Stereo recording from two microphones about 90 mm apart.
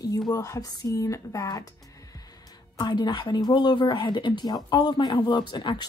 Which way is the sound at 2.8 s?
50° left (ahead or behind).